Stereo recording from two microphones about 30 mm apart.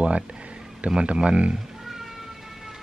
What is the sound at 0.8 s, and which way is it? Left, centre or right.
Speech, right.